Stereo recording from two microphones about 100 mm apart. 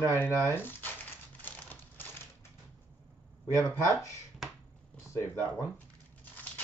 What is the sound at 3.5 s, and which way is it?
Speech, 30° left (ahead or behind).